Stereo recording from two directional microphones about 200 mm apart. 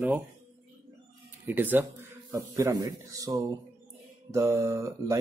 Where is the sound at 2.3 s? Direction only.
20° right (ahead or behind).